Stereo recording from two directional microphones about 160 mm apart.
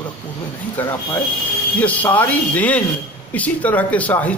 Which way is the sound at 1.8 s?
10° left (ahead or behind).